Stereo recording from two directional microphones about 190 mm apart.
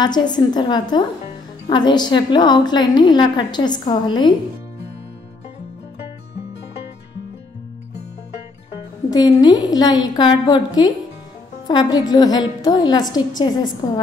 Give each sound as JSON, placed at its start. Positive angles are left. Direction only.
{"t": 0.0, "sound": "a woman's voice", "side_deg": 20}
{"t": 9.1, "sound": "a woman's voice", "side_deg": 20}